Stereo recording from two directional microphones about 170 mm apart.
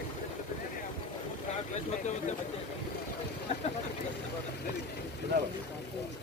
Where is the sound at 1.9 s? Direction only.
45° left (ahead or behind).